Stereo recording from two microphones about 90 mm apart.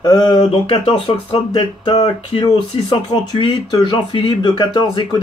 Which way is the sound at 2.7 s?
70° left (ahead or behind).